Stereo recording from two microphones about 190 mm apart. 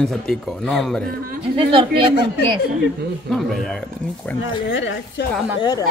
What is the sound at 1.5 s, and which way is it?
Speech, 25° right (ahead or behind).